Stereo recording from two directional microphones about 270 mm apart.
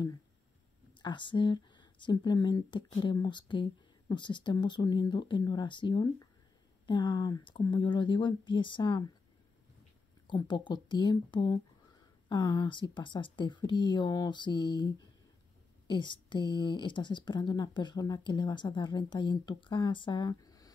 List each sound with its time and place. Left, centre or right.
1.0 s speech: centre
10.2 s speech: centre